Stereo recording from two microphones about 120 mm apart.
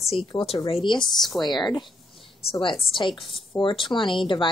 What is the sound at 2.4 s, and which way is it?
Speech, 50° left (ahead or behind).